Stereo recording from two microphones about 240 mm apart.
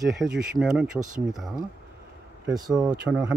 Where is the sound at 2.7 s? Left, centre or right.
Centre.